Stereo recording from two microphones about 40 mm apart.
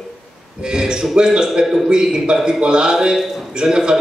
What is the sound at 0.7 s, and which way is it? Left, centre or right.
A man's voice, right.